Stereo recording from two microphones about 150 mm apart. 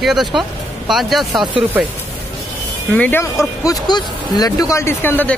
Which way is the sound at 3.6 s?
25° left (ahead or behind).